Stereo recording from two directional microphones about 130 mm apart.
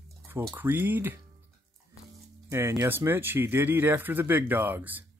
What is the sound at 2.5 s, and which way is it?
Speech, 20° right (ahead or behind).